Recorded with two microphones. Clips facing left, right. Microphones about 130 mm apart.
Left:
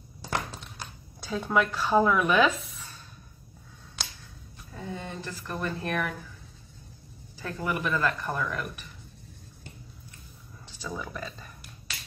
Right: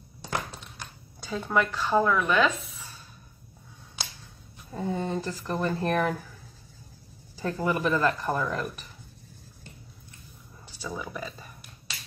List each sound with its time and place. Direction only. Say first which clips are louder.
1.2 s speech: even; centre (ahead or behind)
4.7 s speech: right 8 dB; 35° right (ahead or behind)
7.4 s speech: right 4 dB; 30° right (ahead or behind)
10.7 s speech: right 1 dB; 5° right (ahead or behind)